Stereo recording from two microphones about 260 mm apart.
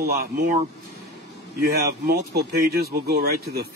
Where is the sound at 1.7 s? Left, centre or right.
Right.